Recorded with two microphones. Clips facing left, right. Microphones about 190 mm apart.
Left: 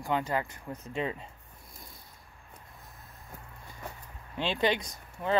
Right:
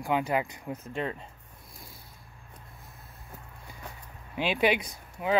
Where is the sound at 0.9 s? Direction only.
Centre (ahead or behind).